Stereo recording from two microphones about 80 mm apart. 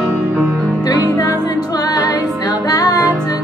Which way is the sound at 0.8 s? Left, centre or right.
Left.